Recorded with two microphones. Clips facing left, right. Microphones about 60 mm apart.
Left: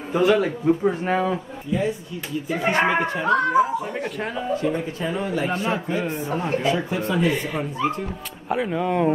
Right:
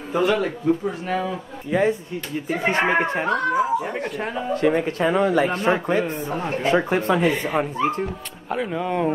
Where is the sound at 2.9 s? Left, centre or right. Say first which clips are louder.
Right 2 dB; right.